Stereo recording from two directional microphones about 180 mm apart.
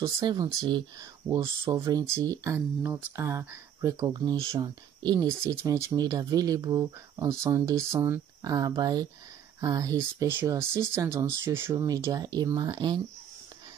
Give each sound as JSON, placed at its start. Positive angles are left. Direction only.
{"t": 0.0, "sound": "speech", "side_deg": -20}